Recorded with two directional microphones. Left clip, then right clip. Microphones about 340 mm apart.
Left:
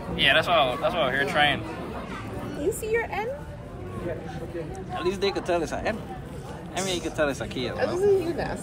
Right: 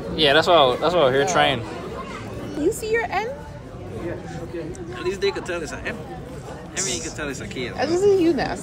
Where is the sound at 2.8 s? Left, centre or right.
Right.